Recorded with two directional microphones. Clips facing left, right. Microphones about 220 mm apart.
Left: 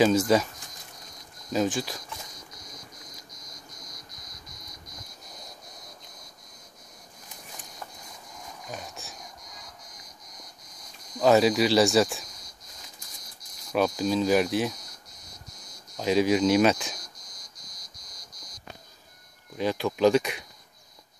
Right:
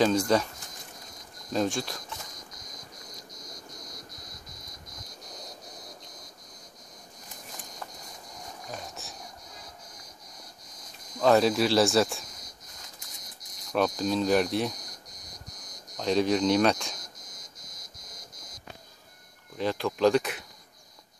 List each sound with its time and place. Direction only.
0.0 s speech: 5° left (ahead or behind)
1.5 s speech: centre (ahead or behind)
11.1 s speech: 5° left (ahead or behind)
13.7 s speech: 5° left (ahead or behind)
16.0 s speech: 5° left (ahead or behind)
17.3 s insect: 25° right (ahead or behind)
19.5 s speech: 5° left (ahead or behind)